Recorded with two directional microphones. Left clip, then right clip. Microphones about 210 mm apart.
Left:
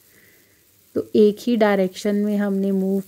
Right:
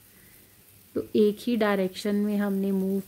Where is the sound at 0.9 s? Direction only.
25° left (ahead or behind).